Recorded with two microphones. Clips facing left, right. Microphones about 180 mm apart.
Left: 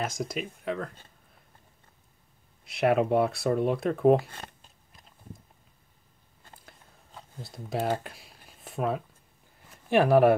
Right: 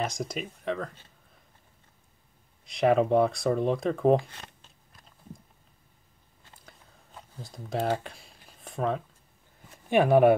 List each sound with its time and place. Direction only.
0.0 s speech: centre (ahead or behind)
2.6 s speech: 5° left (ahead or behind)
4.2 s speech: 45° left (ahead or behind)
7.3 s speech: 5° left (ahead or behind)